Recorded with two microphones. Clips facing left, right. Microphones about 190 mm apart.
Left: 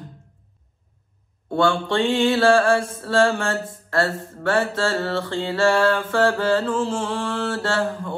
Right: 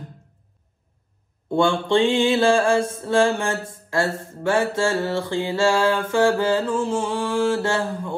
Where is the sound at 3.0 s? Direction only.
20° right (ahead or behind).